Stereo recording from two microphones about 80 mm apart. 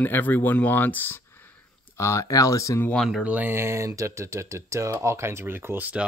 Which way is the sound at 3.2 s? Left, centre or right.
Centre.